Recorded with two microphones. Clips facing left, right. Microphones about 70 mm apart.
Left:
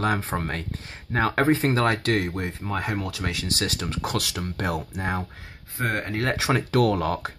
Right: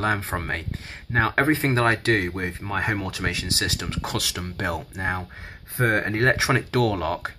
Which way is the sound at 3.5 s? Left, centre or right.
Centre.